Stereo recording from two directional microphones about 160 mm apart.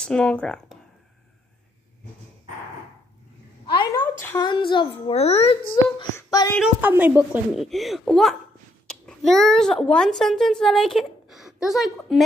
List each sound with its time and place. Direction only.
0.0 s speech: 5° left (ahead or behind)
3.6 s a sound: 30° left (ahead or behind)
4.4 s speech: 30° left (ahead or behind)
6.1 s a sound: 20° left (ahead or behind)
6.6 s speech: 10° right (ahead or behind)
7.5 s a child's voice: centre (ahead or behind)